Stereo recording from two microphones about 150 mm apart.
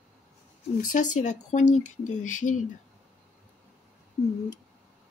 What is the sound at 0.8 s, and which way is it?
Speech, 55° left (ahead or behind).